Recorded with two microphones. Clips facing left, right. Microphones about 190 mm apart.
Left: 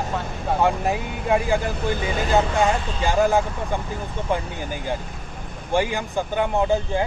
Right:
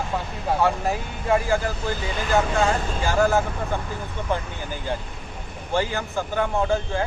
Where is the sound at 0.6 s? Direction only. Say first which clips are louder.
Left 2 dB; 15° left (ahead or behind).